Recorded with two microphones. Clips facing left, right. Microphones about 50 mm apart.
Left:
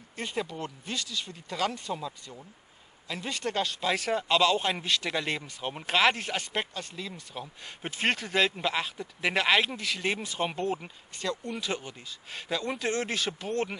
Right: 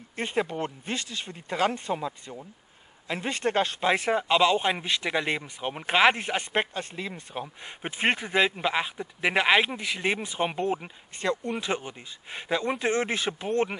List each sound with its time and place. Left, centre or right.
0.1 s speech: right
11.1 s speech: right